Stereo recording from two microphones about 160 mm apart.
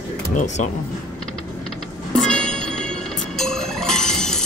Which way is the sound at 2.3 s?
5° left (ahead or behind).